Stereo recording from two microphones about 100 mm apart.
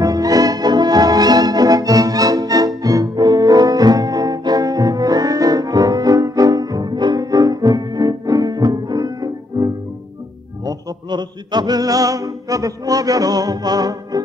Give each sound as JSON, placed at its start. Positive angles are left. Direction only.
{"t": 0.0, "sound": "music", "side_deg": -40}